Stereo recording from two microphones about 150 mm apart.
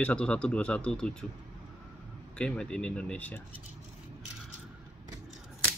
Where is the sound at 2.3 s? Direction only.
5° left (ahead or behind).